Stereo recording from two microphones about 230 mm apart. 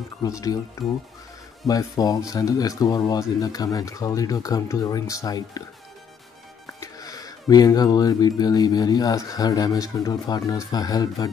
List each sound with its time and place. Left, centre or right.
0.2 s speech: centre
6.8 s speech: centre